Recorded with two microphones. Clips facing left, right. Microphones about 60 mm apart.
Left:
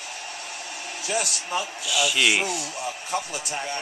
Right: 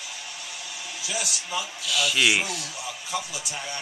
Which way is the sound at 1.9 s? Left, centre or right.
Centre.